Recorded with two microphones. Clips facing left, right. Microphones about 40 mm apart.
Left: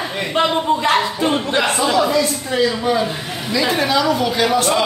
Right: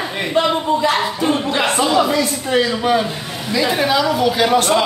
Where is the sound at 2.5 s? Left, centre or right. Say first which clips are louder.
Even; right.